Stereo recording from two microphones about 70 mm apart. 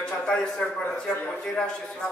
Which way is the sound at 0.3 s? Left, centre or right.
Centre.